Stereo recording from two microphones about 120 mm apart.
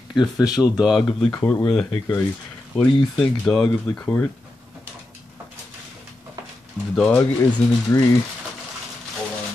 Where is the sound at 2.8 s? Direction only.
5° left (ahead or behind).